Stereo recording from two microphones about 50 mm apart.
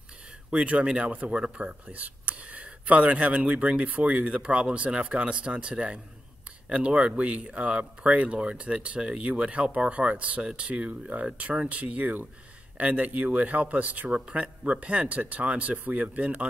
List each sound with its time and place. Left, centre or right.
0.7 s speech: right